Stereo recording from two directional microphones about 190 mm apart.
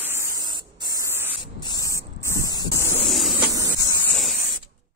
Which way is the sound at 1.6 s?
20° left (ahead or behind).